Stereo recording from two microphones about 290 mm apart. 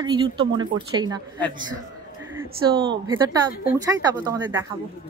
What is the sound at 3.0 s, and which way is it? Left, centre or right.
Speech, centre.